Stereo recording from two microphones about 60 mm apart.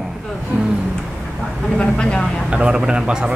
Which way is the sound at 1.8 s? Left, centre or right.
Centre.